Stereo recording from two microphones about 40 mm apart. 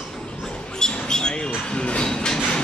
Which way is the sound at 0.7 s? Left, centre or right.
Centre.